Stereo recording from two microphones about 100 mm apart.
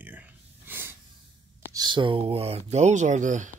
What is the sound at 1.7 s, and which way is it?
Speech, 45° right (ahead or behind).